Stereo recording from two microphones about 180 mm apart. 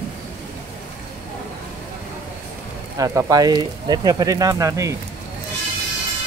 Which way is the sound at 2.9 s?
20° right (ahead or behind).